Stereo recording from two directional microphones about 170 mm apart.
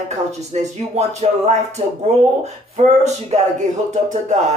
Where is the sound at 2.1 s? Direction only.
40° right (ahead or behind).